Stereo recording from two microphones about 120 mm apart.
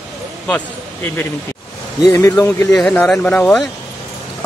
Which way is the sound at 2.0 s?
25° left (ahead or behind).